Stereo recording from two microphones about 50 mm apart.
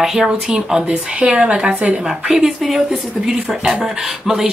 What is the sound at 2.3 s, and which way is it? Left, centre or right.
Speech, centre.